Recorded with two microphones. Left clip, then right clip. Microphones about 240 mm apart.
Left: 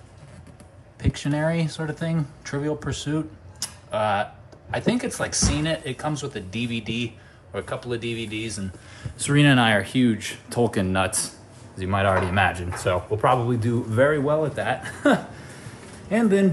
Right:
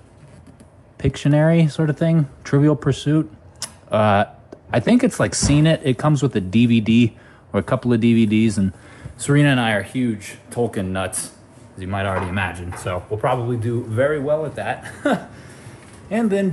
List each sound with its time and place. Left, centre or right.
0.9 s speech: centre
9.4 s speech: centre